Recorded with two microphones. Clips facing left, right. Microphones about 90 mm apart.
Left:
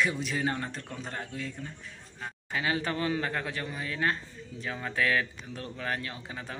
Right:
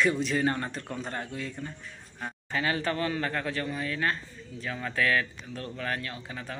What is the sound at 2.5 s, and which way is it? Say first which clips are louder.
A man's voice: right 1 dB; 15° left (ahead or behind).